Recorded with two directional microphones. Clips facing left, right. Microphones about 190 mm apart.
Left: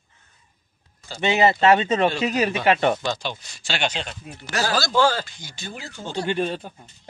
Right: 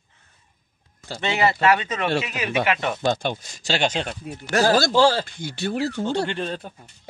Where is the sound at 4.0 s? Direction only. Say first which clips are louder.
Right 5 dB; 50° right (ahead or behind).